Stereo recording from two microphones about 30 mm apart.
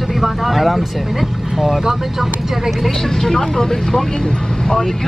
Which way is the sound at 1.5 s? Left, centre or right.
Centre.